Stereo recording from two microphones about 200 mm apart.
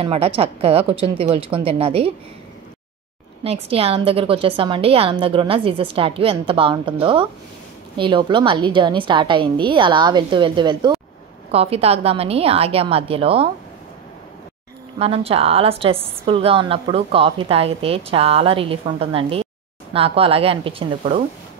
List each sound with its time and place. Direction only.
0.0 s a woman's voice: 30° right (ahead or behind)
3.7 s a woman's voice: 30° right (ahead or behind)
15.0 s a woman's voice: 30° right (ahead or behind)